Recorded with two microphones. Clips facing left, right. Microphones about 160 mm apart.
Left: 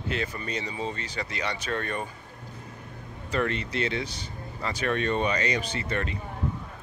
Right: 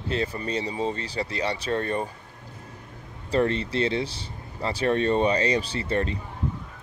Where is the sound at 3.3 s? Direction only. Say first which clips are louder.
Right 5 dB; 30° right (ahead or behind).